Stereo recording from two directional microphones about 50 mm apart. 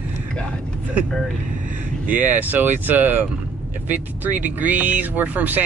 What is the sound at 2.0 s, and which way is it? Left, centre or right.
Speech, right.